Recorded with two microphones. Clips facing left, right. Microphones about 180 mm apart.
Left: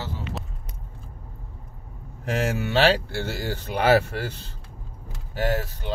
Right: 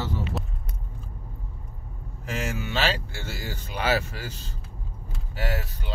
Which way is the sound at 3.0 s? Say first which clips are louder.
Left 7 dB; 65° left (ahead or behind).